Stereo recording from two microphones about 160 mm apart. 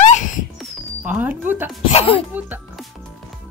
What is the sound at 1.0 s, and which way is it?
Speech, 10° right (ahead or behind).